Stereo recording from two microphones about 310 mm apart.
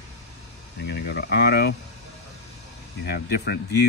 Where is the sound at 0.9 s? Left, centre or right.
Left.